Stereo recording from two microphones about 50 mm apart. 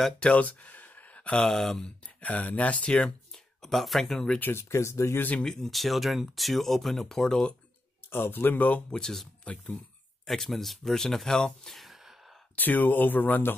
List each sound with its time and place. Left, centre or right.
0.2 s a sound: left
1.4 s speech: centre
2.2 s speech: left
3.6 s speech: centre
4.6 s speech: left
5.4 s speech: centre
8.1 s speech: left
8.9 s speech: centre
9.4 s speech: left
10.2 s speech: centre
11.7 s sigh: centre
12.5 s speech: left